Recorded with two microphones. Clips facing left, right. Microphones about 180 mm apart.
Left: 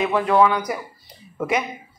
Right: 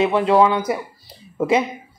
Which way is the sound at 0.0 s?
25° right (ahead or behind).